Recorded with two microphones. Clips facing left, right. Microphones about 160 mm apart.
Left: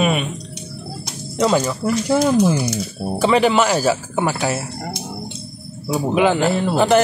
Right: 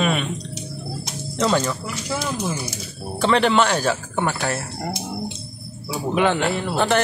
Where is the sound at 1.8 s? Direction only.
60° left (ahead or behind).